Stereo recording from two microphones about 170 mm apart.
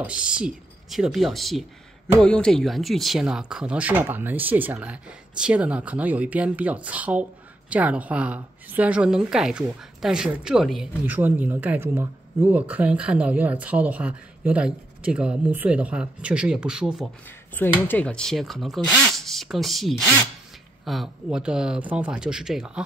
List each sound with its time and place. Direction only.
0.0 s a woman's voice: 5° right (ahead or behind)
17.6 s a woman's voice: 10° left (ahead or behind)